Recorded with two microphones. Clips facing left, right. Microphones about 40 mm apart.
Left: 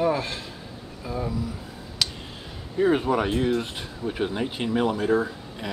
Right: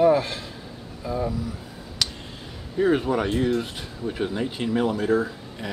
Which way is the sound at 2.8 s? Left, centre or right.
Centre.